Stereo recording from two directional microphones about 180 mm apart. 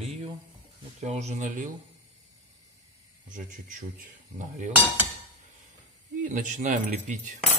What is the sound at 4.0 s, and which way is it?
Speech, 45° right (ahead or behind).